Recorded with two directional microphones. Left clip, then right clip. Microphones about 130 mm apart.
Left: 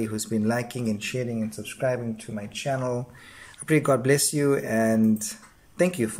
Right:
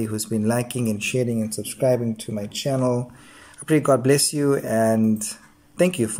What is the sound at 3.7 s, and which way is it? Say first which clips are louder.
Speech: right 3 dB; 10° right (ahead or behind).